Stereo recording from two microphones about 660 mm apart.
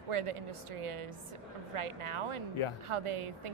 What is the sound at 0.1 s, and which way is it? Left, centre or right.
A woman's voice, right.